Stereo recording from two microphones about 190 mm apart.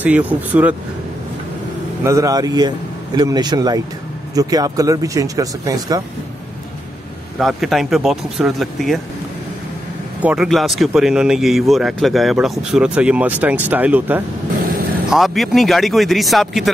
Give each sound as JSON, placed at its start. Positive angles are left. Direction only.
{"t": 0.0, "sound": "speech", "side_deg": -10}
{"t": 2.0, "sound": "speech", "side_deg": -15}
{"t": 7.3, "sound": "speech", "side_deg": 0}
{"t": 10.2, "sound": "speech", "side_deg": -5}